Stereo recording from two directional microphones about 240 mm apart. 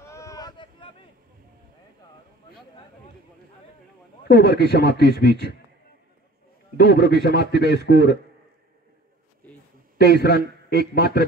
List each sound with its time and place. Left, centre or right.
0.0 s boat: centre
4.3 s a man's voice: left
6.8 s a man's voice: left
10.0 s a man's voice: left